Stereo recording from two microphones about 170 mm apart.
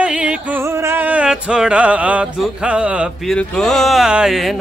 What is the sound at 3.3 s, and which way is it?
Speech, 5° left (ahead or behind).